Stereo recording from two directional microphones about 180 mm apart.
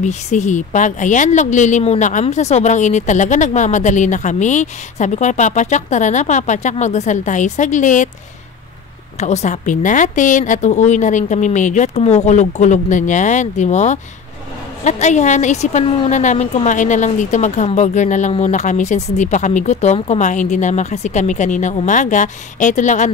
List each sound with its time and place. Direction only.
0.0 s a woman's voice: 40° left (ahead or behind)
9.2 s a woman's voice: 40° left (ahead or behind)